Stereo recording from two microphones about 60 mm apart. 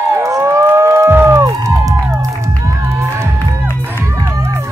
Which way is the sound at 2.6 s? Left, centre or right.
Right.